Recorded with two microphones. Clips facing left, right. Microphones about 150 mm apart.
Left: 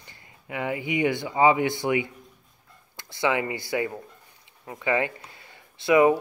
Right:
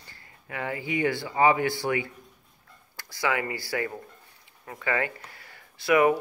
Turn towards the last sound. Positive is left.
turn(degrees=20)  # may be behind; listen again after turning